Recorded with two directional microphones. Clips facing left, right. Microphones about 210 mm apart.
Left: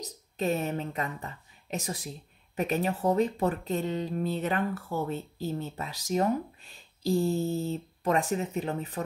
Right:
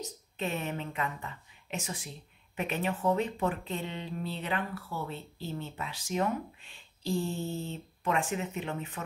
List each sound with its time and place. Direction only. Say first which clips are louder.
0.0 s a woman's voice: left 5 dB; 40° left (ahead or behind)